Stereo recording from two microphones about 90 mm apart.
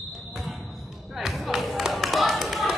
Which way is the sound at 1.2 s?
Centre (ahead or behind).